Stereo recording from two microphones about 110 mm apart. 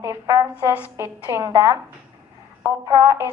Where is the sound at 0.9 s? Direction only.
25° right (ahead or behind).